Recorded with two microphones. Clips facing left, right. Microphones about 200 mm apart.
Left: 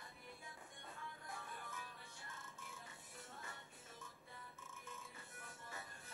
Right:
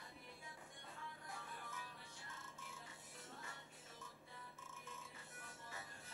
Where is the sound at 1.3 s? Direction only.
50° left (ahead or behind).